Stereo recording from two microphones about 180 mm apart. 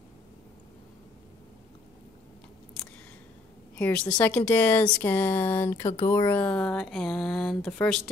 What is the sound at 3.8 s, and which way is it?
Speech, 10° left (ahead or behind).